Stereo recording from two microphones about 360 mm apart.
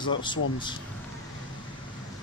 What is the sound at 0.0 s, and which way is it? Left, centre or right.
Speech, centre.